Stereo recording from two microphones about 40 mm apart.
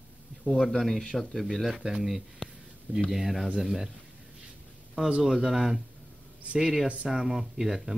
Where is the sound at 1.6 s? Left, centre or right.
Centre.